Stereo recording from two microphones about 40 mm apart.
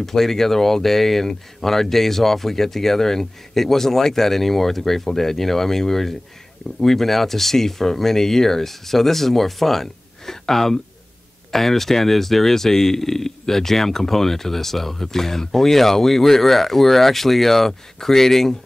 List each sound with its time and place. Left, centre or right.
0.0 s speech: centre